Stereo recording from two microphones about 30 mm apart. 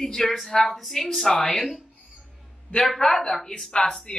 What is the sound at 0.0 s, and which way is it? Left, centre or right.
A woman's voice, centre.